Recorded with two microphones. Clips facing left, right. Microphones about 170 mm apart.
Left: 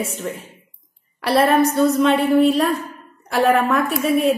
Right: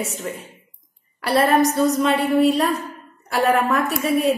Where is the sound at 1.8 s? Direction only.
Centre (ahead or behind).